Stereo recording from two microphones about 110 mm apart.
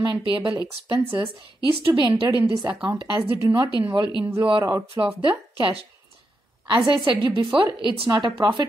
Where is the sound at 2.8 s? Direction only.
40° right (ahead or behind).